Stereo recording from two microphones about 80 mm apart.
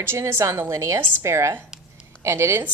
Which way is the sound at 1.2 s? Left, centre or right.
Right.